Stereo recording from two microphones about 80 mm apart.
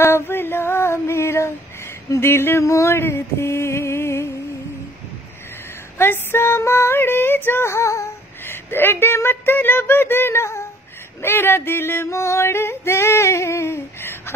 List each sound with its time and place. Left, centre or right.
0.0 s a sound: left
2.0 s female singing: left
5.9 s female singing: left